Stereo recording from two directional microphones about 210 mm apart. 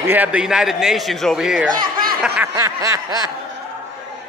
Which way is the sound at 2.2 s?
10° right (ahead or behind).